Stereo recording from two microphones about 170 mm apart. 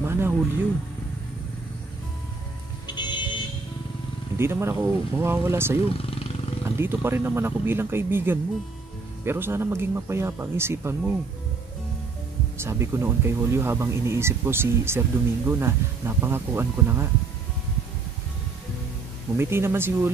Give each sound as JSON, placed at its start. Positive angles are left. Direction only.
{"t": 0.0, "sound": "music", "side_deg": -15}
{"t": 2.9, "sound": "music", "side_deg": 25}
{"t": 4.4, "sound": "speech", "side_deg": -15}
{"t": 12.5, "sound": "speech", "side_deg": -15}
{"t": 19.3, "sound": "speech", "side_deg": -15}